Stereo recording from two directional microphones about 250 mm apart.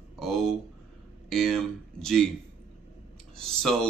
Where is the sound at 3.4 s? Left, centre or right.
Centre.